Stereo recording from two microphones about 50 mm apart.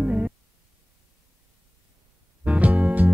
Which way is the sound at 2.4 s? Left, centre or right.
Right.